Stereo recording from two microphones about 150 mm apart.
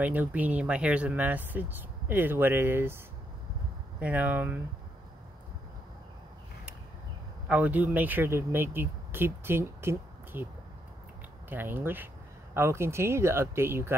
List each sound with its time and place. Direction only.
0.0 s speech: 10° right (ahead or behind)
4.0 s speech: 10° right (ahead or behind)
7.4 s speech: 10° right (ahead or behind)